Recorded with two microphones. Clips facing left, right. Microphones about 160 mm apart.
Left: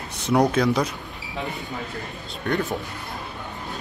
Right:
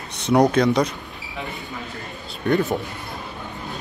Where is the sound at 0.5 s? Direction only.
5° left (ahead or behind).